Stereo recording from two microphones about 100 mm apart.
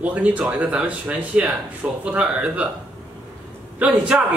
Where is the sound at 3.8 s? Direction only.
15° right (ahead or behind).